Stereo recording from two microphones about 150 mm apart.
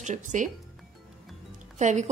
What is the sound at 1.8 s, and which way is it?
Speech, 55° right (ahead or behind).